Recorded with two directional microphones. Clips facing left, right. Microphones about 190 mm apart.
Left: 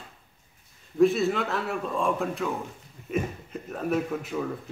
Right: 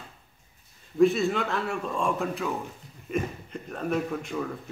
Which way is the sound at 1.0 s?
Centre (ahead or behind).